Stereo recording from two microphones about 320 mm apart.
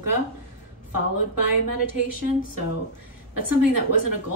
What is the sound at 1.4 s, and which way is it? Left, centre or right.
A woman's voice, right.